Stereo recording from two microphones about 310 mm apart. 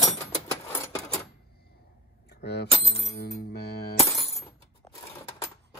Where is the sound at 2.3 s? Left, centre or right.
Left.